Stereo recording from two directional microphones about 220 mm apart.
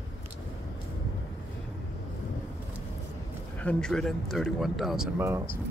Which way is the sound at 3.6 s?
5° left (ahead or behind).